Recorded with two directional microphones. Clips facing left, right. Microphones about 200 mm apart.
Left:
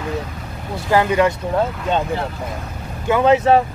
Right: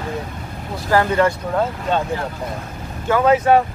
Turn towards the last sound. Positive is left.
turn(degrees=30)  # may be behind; listen again after turning